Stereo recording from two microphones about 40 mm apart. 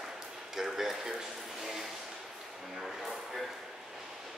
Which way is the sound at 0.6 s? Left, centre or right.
Centre.